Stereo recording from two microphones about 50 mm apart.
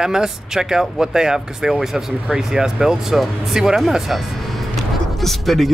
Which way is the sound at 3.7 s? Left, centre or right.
Centre.